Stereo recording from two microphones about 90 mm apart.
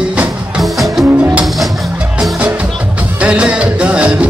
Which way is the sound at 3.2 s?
10° right (ahead or behind).